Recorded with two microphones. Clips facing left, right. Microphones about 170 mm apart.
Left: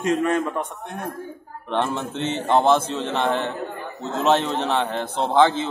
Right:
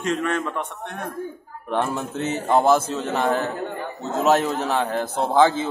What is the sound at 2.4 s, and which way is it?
A man's voice, 5° right (ahead or behind).